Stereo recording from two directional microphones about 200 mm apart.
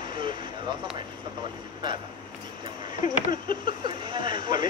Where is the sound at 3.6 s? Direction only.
25° right (ahead or behind).